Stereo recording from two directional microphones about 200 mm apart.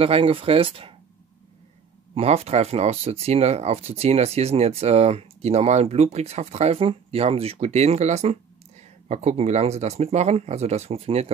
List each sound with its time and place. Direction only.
0.0 s speech: 30° right (ahead or behind)
2.1 s speech: 30° right (ahead or behind)